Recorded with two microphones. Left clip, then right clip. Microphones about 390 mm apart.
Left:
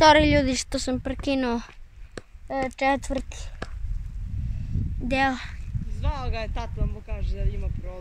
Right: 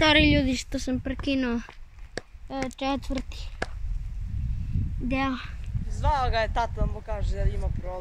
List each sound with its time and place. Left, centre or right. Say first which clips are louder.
0.0 s speech: left 4 dB; centre
2.2 s a sound: right 4 dB; centre
2.8 s speech: left 7 dB; centre
3.6 s whispering: right 6 dB; centre
5.0 s speech: left 5 dB; centre
5.9 s speech: right 9 dB; centre